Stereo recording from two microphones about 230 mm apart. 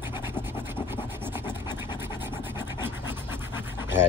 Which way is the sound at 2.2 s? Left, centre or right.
Centre.